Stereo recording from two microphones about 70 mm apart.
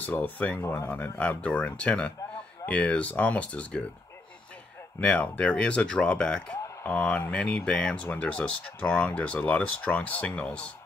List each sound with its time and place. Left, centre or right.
0.0 s speech: left
0.6 s speech: left
0.9 s speech: left
5.1 s speech: centre
6.8 s speech: left